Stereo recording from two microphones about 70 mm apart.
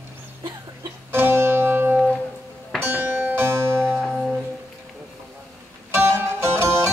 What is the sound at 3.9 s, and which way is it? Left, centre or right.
Music, centre.